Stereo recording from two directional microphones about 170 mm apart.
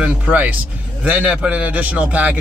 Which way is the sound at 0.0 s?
10° right (ahead or behind).